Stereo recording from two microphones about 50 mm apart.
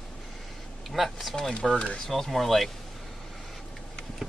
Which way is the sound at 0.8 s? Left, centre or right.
Centre.